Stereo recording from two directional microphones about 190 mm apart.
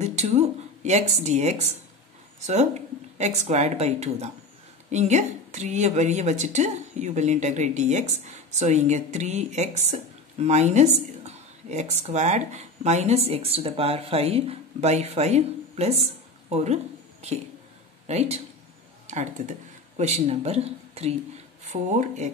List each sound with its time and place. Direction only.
0.0 s a woman's voice: 35° right (ahead or behind)